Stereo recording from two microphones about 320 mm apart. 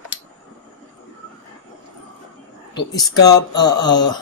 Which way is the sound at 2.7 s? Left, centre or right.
Centre.